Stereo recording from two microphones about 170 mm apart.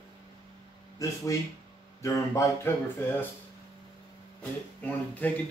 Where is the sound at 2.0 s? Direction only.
15° left (ahead or behind).